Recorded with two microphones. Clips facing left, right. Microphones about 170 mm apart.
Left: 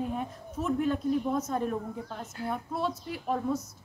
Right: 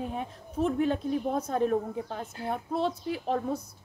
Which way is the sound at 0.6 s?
75° right (ahead or behind).